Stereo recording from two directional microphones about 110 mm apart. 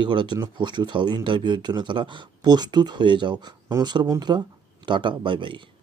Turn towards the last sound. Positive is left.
turn(degrees=-50)  # may be behind; listen again after turning